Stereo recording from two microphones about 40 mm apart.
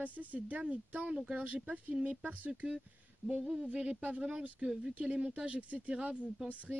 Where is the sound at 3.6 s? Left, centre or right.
Right.